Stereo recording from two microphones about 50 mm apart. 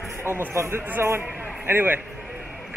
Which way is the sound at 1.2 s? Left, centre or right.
Right.